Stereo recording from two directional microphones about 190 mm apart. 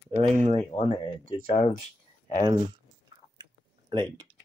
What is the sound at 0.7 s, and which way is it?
Speech, 35° left (ahead or behind).